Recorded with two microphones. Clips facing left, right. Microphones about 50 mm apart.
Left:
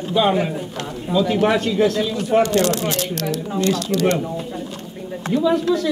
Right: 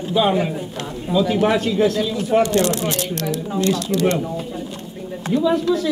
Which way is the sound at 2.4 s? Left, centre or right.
Right.